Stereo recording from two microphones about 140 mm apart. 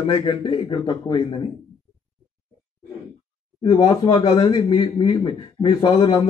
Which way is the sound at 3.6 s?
30° left (ahead or behind).